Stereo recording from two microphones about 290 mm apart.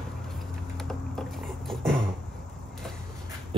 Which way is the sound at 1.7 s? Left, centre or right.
Centre.